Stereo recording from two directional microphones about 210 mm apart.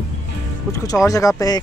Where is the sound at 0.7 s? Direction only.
15° left (ahead or behind).